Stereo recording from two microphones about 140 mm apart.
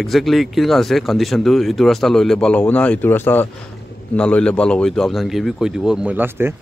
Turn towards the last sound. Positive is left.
turn(degrees=-15)  # may be behind; listen again after turning